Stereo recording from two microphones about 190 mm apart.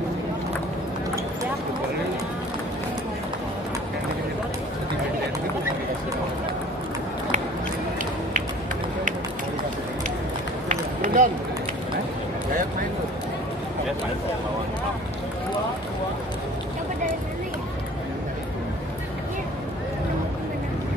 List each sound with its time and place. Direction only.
10.7 s run: 40° right (ahead or behind)